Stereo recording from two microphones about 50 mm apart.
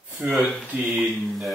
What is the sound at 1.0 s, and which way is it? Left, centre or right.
Speech, centre.